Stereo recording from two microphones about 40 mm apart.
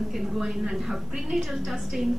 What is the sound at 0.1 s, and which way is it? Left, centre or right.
A woman's voice, centre.